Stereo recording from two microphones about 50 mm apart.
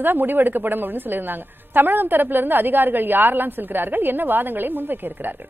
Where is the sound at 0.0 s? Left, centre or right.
Right.